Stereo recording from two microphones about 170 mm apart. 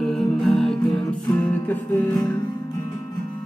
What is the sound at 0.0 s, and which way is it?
Music, centre (ahead or behind).